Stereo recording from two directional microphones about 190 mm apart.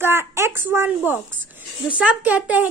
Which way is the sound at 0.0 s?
15° right (ahead or behind).